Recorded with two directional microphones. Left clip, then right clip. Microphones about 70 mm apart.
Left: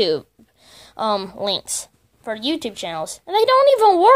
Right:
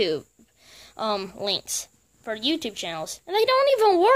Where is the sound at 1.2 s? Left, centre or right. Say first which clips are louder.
Left 6 dB; left.